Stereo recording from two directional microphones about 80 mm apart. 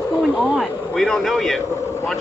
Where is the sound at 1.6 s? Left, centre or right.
Left.